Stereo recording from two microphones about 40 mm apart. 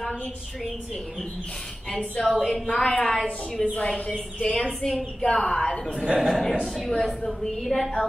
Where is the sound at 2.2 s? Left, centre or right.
Centre.